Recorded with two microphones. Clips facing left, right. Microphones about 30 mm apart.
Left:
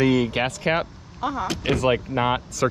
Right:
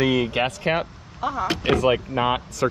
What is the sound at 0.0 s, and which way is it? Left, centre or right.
Speech, right.